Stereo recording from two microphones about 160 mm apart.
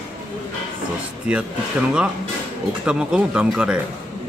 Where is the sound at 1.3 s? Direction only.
5° right (ahead or behind).